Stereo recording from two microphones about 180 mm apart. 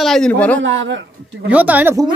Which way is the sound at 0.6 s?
90° right.